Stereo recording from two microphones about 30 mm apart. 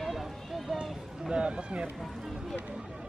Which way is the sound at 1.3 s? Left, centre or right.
Right.